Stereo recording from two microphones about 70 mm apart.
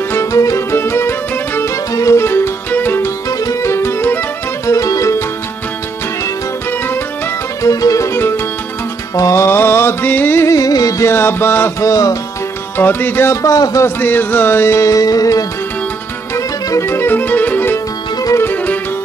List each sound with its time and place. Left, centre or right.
0.1 s music: left
3.3 s music: left
3.7 s music: left
4.6 s music: left
7.6 s music: left
10.4 s music: left
11.1 s music: left
11.8 s music: left
12.7 s music: left
13.9 s music: left
16.3 s music: left